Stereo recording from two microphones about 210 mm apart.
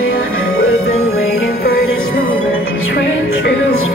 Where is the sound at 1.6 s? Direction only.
50° left (ahead or behind).